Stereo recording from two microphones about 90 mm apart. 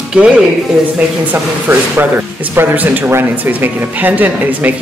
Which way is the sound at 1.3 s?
20° right (ahead or behind).